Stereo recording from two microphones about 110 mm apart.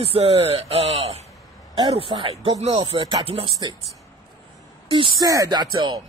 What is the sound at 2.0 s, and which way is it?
Speech, 55° right (ahead or behind).